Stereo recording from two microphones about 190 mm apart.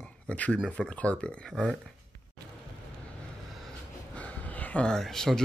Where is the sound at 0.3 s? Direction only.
5° left (ahead or behind).